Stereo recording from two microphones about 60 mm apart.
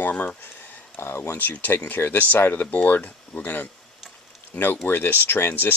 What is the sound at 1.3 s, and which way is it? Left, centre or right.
Speech, left.